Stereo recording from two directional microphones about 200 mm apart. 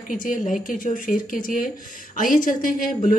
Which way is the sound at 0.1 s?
40° left (ahead or behind).